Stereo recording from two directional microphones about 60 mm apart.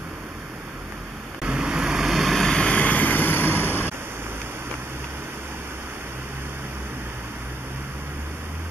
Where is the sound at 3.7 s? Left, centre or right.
Right.